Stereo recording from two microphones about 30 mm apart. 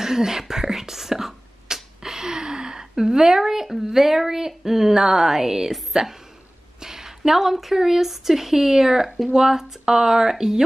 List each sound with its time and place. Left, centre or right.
0.0 s beatboxing: centre
5.9 s speech: centre
6.8 s a sound: centre
7.7 s speech: centre